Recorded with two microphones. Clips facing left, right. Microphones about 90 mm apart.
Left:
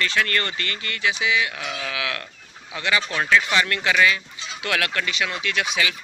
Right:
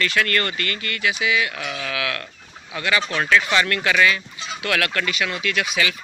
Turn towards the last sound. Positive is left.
turn(degrees=25)  # may be behind; listen again after turning